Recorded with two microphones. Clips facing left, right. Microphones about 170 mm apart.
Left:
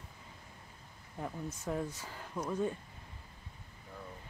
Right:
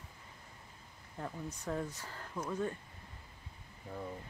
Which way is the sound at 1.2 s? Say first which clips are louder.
Left 2 dB; 5° left (ahead or behind).